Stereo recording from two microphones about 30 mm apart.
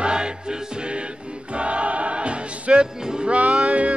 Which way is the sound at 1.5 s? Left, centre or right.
Right.